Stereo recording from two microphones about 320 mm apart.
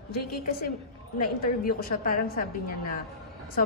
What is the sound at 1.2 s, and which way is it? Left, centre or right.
Speech, left.